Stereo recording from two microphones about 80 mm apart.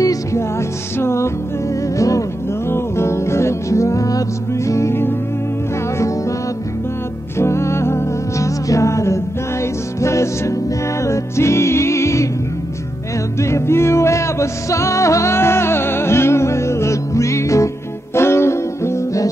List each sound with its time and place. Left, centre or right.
0.0 s music: left
7.3 s music: left
13.4 s music: left